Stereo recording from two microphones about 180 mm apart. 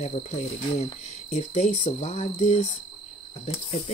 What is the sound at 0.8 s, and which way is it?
Speech, 35° left (ahead or behind).